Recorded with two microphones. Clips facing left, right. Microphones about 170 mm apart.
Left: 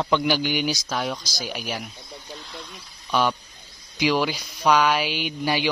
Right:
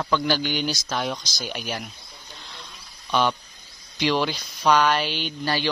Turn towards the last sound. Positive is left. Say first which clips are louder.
# left 2 dB
turn(degrees=10)  # may be behind; listen again after turning